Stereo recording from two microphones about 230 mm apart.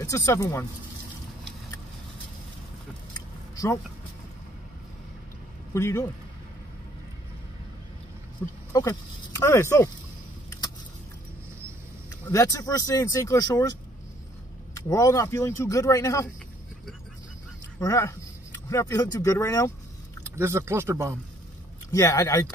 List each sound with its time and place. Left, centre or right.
0.0 s speech: centre
5.7 s speech: centre
8.7 s speech: centre
12.3 s speech: centre
14.9 s speech: centre
17.7 s speech: centre
20.3 s speech: centre
21.9 s speech: centre